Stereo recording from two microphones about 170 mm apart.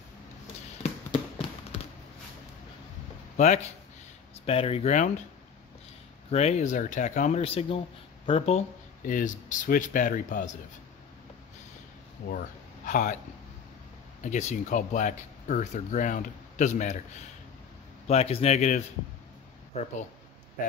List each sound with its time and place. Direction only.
3.3 s speech: 45° left (ahead or behind)
6.3 s speech: 40° left (ahead or behind)
9.0 s speech: 50° left (ahead or behind)
12.3 s speech: 50° left (ahead or behind)
14.2 s speech: 45° left (ahead or behind)
18.0 s speech: 35° left (ahead or behind)